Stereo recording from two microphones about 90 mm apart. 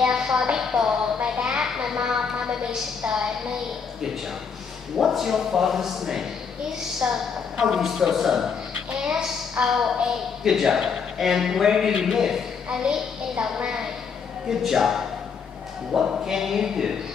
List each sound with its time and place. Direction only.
0.0 s a woman's voice: 5° right (ahead or behind)
4.9 s a woman's voice: 5° right (ahead or behind)